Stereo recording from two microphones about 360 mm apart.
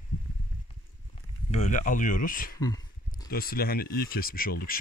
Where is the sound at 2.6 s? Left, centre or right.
Centre.